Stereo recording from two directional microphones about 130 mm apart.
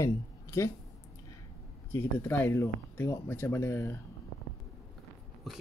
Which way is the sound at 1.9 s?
15° left (ahead or behind).